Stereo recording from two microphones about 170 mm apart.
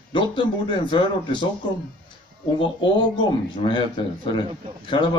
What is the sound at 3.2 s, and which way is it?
A man's voice, 30° left (ahead or behind).